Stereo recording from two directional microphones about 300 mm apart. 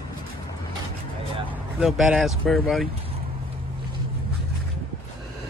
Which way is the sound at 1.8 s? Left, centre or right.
Centre.